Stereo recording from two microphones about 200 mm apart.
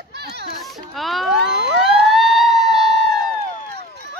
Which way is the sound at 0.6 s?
Centre (ahead or behind).